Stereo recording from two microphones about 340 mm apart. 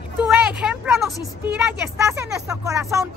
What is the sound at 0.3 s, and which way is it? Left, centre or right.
A woman's voice, centre.